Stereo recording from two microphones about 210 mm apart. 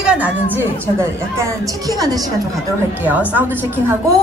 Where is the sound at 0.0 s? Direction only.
5° right (ahead or behind).